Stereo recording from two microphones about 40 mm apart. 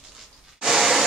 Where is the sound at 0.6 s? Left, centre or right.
Centre.